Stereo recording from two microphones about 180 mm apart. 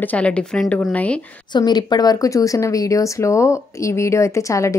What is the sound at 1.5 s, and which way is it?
Speech, 25° left (ahead or behind).